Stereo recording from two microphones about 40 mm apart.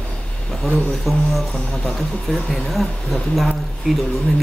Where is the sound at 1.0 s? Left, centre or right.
Centre.